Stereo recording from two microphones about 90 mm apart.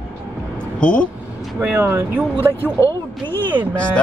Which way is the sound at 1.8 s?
30° right (ahead or behind).